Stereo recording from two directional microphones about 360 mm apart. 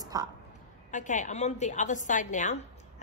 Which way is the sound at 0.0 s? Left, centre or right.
Centre.